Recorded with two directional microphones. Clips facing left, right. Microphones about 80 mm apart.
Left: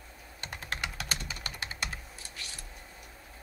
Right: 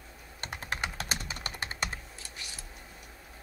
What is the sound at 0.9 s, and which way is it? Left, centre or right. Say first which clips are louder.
Typing: right 1 dB; right.